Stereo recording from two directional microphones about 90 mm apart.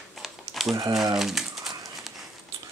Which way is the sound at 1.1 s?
5° right (ahead or behind).